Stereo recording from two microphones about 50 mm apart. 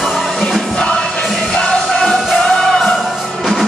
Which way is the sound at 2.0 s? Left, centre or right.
Centre.